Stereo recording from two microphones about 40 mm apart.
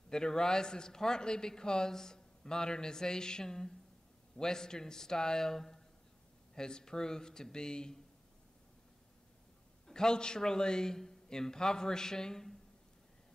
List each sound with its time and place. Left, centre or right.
0.1 s a man's voice: centre
9.8 s a man's voice: centre